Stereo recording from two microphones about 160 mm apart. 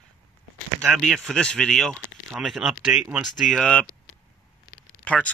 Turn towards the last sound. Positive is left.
turn(degrees=10)  # may be behind; listen again after turning